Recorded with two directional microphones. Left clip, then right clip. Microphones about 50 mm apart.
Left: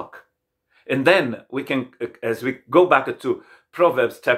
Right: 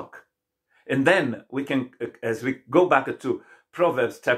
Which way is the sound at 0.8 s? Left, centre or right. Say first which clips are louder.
Left 3 dB; left.